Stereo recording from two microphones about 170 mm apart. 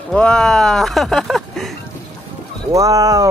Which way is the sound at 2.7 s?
20° right (ahead or behind).